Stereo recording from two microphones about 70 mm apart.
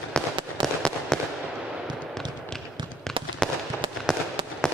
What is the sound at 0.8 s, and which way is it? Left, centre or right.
Fireworks, centre.